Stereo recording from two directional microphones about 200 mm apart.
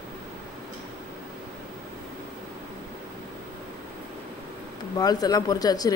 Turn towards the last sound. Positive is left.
turn(degrees=20)  # may be behind; listen again after turning